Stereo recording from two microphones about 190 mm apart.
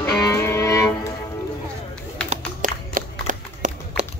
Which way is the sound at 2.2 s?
40° right (ahead or behind).